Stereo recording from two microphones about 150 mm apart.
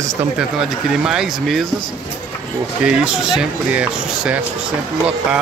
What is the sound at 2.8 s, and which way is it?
Speech, 5° right (ahead or behind).